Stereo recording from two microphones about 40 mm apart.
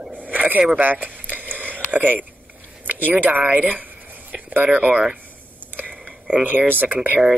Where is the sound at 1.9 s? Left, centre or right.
Right.